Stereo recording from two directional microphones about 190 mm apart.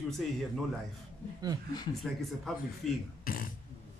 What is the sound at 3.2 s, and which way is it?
Beatboxing, 50° left (ahead or behind).